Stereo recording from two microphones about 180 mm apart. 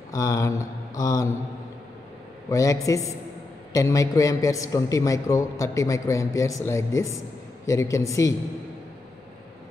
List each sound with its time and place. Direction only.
0.1 s mantra: 20° left (ahead or behind)
2.5 s a man's voice: 20° left (ahead or behind)